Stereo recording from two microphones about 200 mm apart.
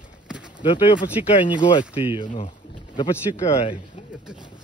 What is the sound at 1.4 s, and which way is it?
Speech, 25° left (ahead or behind).